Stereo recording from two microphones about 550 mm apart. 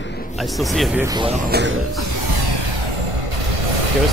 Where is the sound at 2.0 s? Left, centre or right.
Right.